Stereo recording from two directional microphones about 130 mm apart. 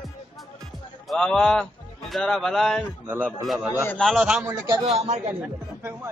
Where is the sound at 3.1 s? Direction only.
10° right (ahead or behind).